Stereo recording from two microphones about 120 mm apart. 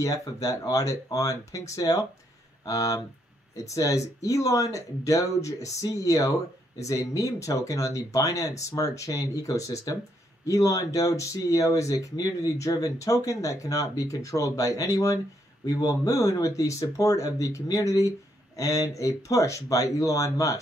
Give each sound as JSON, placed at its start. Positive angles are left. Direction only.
{"t": 0.0, "sound": "speech", "side_deg": 30}